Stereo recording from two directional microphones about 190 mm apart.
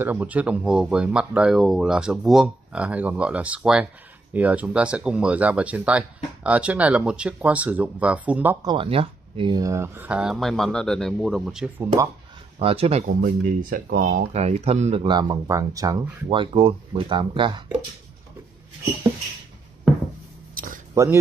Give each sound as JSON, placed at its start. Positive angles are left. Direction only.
{"t": 0.0, "sound": "speech", "side_deg": -10}
{"t": 8.6, "sound": "speech", "side_deg": -30}
{"t": 12.5, "sound": "speech", "side_deg": -30}
{"t": 13.6, "sound": "speech", "side_deg": -50}
{"t": 16.3, "sound": "speech", "side_deg": -30}
{"t": 20.5, "sound": "a sound", "side_deg": -45}
{"t": 20.9, "sound": "speech", "side_deg": -15}